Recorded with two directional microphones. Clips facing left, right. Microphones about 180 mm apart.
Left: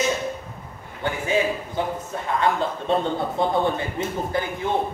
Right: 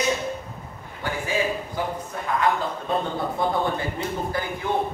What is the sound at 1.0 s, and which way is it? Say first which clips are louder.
A man's voice: left 3 dB; 25° left (ahead or behind).